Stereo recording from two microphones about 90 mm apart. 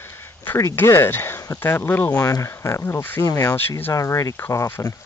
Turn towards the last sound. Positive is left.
turn(degrees=30)  # may be behind; listen again after turning